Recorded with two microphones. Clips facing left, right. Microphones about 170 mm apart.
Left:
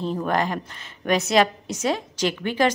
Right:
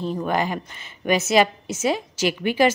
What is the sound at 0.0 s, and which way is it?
A woman's voice, 5° right (ahead or behind).